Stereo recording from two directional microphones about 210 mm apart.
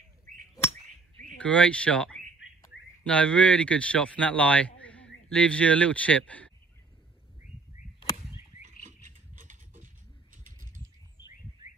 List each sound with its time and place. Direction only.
1.4 s speech: 5° left (ahead or behind)
8.6 s patter: 35° right (ahead or behind)
10.3 s typing: 40° right (ahead or behind)